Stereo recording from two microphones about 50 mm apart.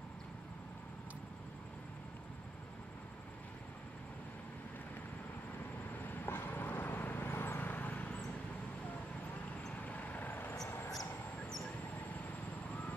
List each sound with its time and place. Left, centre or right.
6.0 s vehicle: left
9.7 s vehicle: left
10.2 s vehicle: left